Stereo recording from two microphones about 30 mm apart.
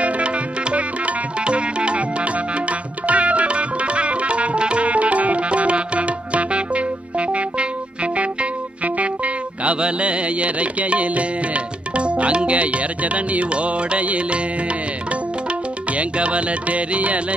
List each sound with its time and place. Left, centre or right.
0.0 s music: right
4.8 s music: right
8.8 s music: right
12.5 s music: right
15.9 s music: right